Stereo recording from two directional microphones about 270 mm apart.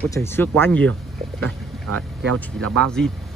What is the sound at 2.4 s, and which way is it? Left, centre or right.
Speech, centre.